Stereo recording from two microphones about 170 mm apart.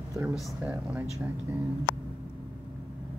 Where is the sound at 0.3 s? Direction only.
Centre (ahead or behind).